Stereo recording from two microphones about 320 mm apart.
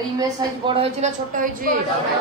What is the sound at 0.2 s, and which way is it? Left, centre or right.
A woman's voice, centre.